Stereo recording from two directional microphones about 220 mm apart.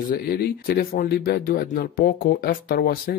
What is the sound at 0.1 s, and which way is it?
Speech, 40° left (ahead or behind).